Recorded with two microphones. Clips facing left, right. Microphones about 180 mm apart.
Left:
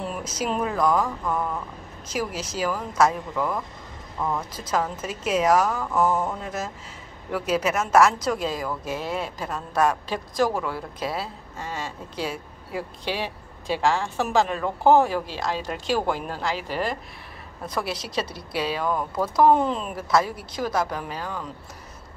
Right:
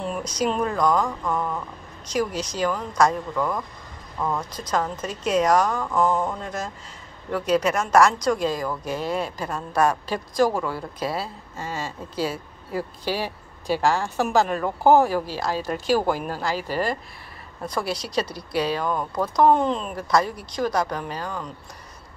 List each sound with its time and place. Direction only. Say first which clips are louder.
0.0 s speech: right 4 dB; 5° left (ahead or behind)
15.5 s speech: right 3 dB; 40° right (ahead or behind)
15.9 s speech: right 3 dB; 5° right (ahead or behind)